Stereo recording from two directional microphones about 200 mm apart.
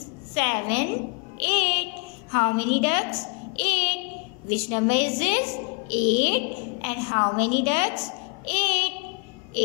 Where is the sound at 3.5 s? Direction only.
35° left (ahead or behind).